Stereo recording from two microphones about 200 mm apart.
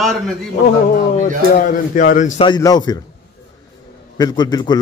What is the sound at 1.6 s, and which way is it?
Speech, 40° left (ahead or behind).